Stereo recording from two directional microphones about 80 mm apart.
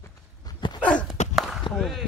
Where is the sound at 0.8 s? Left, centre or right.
Centre.